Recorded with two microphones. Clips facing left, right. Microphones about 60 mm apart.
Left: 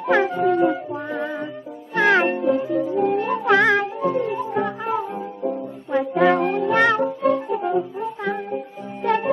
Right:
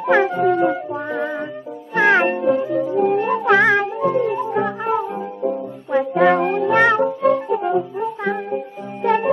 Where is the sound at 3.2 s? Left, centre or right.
Centre.